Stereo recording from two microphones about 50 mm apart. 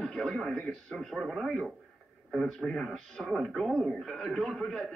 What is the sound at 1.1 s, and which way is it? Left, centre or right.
Speech, centre.